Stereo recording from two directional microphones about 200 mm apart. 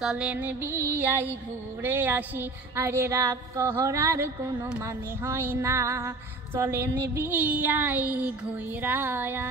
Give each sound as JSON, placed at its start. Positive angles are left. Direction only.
{"t": 0.0, "sound": "female singing", "side_deg": -5}